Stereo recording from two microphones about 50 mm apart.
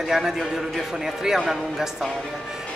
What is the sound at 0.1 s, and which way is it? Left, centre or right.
Speech, centre.